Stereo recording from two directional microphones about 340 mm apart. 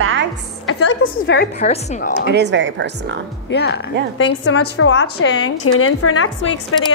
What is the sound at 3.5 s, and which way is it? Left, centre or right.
A woman's voice, left.